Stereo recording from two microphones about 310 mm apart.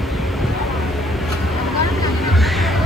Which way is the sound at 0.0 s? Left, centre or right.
Centre.